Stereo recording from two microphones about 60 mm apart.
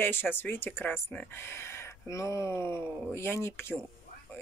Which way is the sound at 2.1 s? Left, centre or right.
Left.